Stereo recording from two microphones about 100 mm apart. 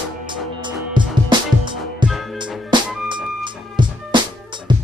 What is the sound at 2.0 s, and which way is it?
Music, 50° right (ahead or behind).